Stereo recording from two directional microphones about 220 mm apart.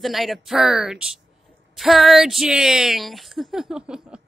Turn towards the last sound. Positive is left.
turn(degrees=-5)  # may be behind; listen again after turning